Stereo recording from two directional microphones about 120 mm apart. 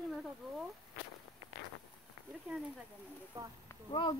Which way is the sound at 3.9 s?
45° left (ahead or behind).